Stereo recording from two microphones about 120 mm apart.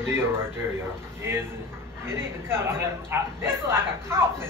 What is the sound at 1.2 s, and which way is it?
A man's voice, 20° right (ahead or behind).